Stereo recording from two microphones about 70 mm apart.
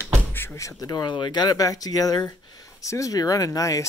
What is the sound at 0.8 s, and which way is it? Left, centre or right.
Speech, left.